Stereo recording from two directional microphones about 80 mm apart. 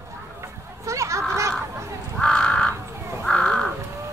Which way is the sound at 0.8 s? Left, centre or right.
Right.